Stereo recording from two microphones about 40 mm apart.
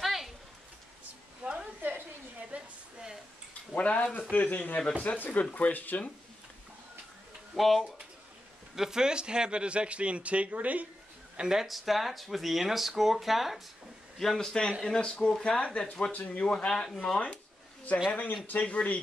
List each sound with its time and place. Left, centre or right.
0.0 s a sound: centre
1.4 s a sound: right
1.8 s a sound: right
2.5 s a sound: right
3.7 s speech: left
7.5 s speech: centre
8.7 s speech: centre; by 10.9 s right
11.3 s speech: centre
11.6 s speech: centre
14.1 s a man's voice: centre; by 15.8 s left
16.1 s speech: left
16.6 s a man's voice: centre
18.6 s speech: left